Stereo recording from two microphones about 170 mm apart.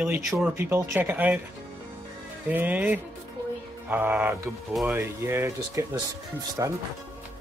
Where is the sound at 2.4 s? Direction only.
10° right (ahead or behind).